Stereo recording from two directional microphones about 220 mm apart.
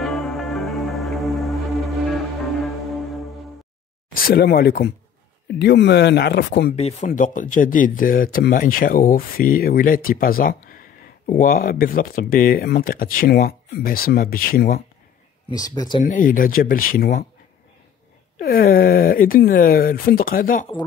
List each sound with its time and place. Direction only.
0.0 s music: centre (ahead or behind)
4.1 s speech: 45° left (ahead or behind)
6.7 s speech: 30° left (ahead or behind)
15.5 s speech: 15° left (ahead or behind)
16.0 s speech: 40° left (ahead or behind)
18.4 s speech: 40° left (ahead or behind)